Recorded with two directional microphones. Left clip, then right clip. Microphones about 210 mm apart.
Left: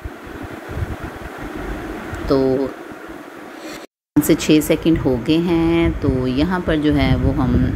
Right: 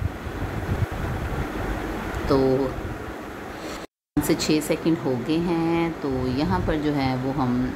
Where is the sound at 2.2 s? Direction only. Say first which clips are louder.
Left 4 dB; 15° left (ahead or behind).